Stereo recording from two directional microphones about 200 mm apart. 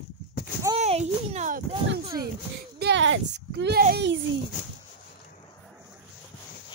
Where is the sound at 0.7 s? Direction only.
30° right (ahead or behind).